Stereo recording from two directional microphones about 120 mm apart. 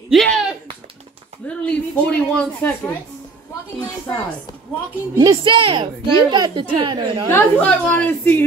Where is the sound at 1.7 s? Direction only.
10° left (ahead or behind).